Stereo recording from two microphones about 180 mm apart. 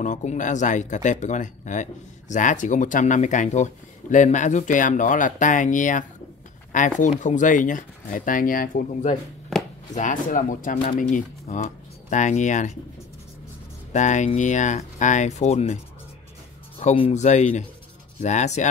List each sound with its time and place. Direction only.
0.0 s speech: 40° left (ahead or behind)
13.9 s speech: 40° left (ahead or behind)
16.8 s speech: 35° left (ahead or behind)